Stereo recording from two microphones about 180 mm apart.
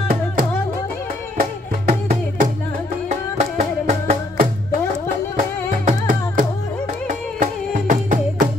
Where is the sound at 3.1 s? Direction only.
40° right (ahead or behind).